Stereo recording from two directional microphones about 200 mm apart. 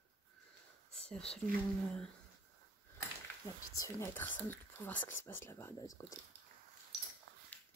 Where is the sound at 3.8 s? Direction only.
15° left (ahead or behind).